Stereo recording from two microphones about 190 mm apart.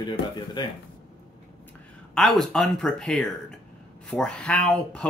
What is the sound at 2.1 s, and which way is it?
Speech, centre (ahead or behind).